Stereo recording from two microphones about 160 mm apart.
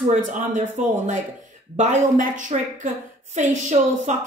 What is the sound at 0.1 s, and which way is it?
A woman's voice, 50° right (ahead or behind).